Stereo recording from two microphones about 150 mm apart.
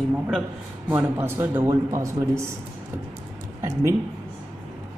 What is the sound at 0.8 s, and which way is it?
Speech, 10° right (ahead or behind).